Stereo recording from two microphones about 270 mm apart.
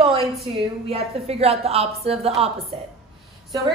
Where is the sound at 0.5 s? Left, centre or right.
Right.